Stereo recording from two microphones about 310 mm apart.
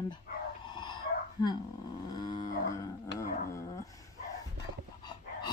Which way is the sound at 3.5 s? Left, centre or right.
Centre.